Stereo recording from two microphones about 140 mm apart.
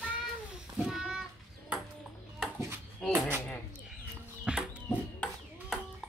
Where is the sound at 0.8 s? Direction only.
5° right (ahead or behind).